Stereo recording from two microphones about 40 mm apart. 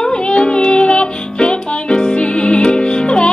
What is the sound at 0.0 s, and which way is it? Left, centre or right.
Music, left.